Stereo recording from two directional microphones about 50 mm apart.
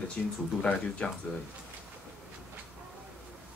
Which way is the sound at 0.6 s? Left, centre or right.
Left.